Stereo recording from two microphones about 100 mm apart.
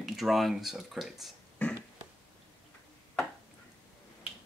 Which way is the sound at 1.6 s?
15° left (ahead or behind).